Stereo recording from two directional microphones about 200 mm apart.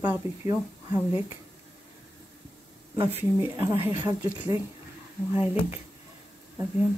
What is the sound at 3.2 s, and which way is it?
Speech, 10° right (ahead or behind).